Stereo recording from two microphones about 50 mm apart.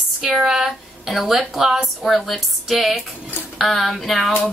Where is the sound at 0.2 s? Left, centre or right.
Centre.